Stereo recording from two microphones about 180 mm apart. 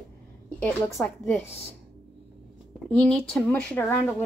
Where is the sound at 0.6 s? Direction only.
15° left (ahead or behind).